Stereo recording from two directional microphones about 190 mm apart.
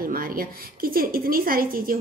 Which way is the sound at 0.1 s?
50° right (ahead or behind).